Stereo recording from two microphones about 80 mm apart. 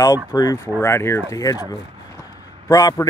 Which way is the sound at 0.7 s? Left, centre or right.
Left.